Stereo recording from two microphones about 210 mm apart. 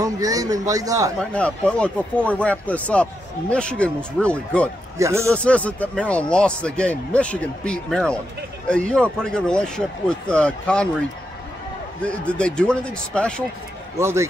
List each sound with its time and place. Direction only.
0.0 s a man's voice: 15° right (ahead or behind)
1.3 s speech: 5° left (ahead or behind)
4.9 s a man's voice: 15° right (ahead or behind)
5.3 s speech: 5° left (ahead or behind)
12.0 s speech: 5° left (ahead or behind)
13.9 s a man's voice: 15° right (ahead or behind)